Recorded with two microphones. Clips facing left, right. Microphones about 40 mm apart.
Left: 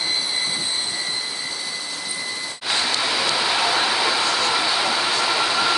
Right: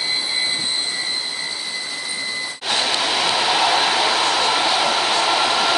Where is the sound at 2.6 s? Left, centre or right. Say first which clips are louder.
Right 2 dB; right.